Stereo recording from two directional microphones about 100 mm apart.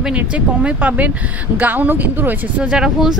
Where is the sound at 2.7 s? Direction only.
5° right (ahead or behind).